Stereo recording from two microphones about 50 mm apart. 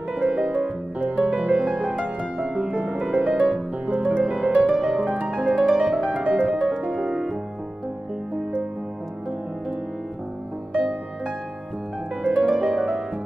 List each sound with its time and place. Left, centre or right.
0.1 s music: centre
5.5 s harp: centre
5.8 s music: right
10.7 s music: right